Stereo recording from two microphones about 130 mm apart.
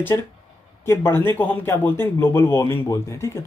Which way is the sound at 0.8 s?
20° left (ahead or behind).